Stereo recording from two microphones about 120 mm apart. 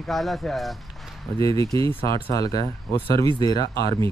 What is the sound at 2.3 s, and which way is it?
Speech, 30° left (ahead or behind).